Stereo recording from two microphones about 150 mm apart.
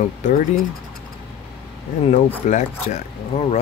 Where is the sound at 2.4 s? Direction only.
55° left (ahead or behind).